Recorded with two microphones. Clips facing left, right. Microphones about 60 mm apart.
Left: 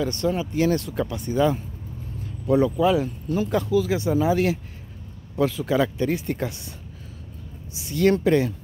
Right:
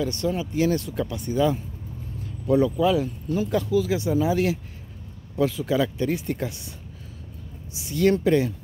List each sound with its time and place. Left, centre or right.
0.0 s speech: left
1.0 s speech: left
2.4 s speech: left
3.3 s speech: left
5.4 s speech: left
7.7 s speech: left